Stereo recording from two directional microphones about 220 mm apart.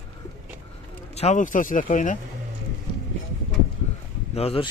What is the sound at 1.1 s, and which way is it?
Speech, 30° left (ahead or behind).